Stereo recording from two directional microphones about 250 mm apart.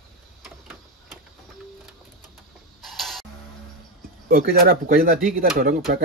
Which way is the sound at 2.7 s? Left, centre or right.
Centre.